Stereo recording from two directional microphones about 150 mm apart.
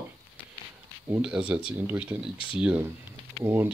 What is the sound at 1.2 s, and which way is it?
Speech, 10° right (ahead or behind).